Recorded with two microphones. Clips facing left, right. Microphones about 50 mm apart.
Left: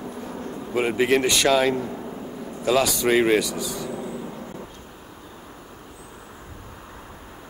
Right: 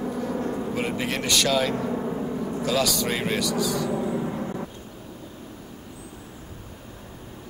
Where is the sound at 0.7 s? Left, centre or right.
Left.